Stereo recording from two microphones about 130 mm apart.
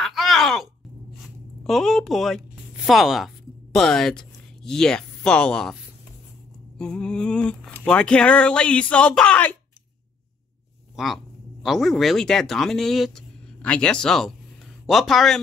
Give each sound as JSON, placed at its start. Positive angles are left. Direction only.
{"t": 0.0, "sound": "groan", "side_deg": 0}
{"t": 1.6, "sound": "speech", "side_deg": 0}
{"t": 6.8, "sound": "speech", "side_deg": 5}
{"t": 11.0, "sound": "speech", "side_deg": -5}